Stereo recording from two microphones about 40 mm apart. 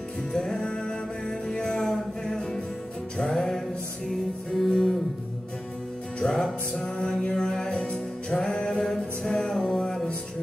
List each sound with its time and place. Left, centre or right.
0.3 s music: centre
6.2 s music: centre